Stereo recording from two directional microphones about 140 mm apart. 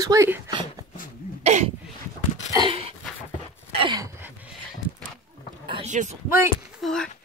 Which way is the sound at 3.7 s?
30° right (ahead or behind).